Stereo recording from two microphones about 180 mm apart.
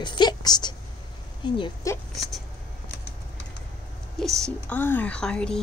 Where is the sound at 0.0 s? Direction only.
25° left (ahead or behind).